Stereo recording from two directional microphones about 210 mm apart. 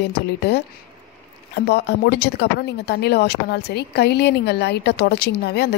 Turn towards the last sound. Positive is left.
turn(degrees=50)  # may be behind; listen again after turning